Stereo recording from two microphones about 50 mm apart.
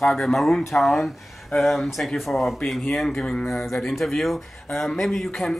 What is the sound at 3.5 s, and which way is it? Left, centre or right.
Speech, centre.